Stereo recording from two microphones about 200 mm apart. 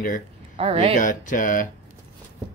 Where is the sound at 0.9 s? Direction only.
40° left (ahead or behind).